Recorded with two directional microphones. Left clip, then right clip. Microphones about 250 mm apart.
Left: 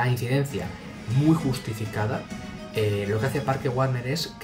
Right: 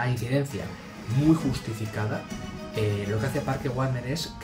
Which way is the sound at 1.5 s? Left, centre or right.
Centre.